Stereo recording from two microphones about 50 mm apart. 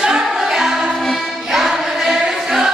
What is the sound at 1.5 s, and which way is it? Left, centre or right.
Choir, centre.